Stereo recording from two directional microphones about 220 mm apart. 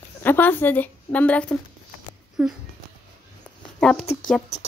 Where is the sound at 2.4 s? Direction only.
5° right (ahead or behind).